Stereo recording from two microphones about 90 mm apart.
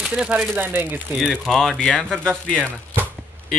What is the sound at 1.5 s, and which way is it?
Speech, 5° left (ahead or behind).